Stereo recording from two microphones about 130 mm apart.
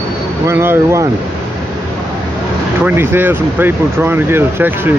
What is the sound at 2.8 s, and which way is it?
Speech, 15° right (ahead or behind).